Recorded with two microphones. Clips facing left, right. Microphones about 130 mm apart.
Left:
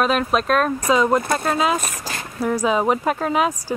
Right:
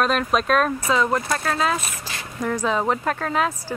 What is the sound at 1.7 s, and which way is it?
Speech, 45° left (ahead or behind).